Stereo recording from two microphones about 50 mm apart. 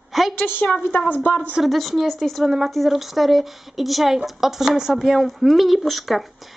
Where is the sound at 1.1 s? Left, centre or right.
Left.